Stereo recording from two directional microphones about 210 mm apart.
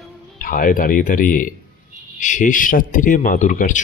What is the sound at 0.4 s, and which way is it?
Speech, 40° left (ahead or behind).